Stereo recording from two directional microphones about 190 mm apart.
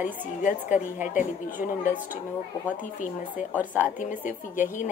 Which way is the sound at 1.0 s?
40° left (ahead or behind).